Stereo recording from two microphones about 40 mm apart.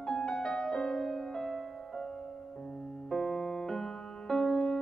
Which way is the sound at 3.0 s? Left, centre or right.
Centre.